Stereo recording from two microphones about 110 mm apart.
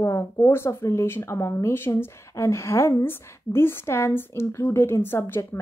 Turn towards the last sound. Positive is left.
turn(degrees=20)  # may be behind; listen again after turning